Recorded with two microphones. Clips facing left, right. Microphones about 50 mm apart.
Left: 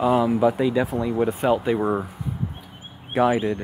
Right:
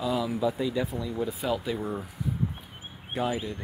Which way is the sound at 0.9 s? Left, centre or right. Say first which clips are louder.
Left 9 dB; left.